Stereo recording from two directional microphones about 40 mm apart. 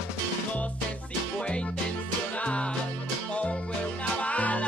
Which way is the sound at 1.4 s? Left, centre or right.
Left.